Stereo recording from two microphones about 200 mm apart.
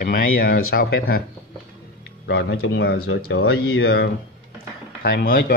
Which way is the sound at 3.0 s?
80° left.